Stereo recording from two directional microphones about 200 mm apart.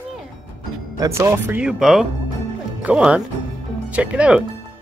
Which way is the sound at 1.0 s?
15° right (ahead or behind).